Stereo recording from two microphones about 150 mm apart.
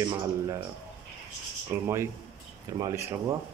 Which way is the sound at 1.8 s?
20° right (ahead or behind).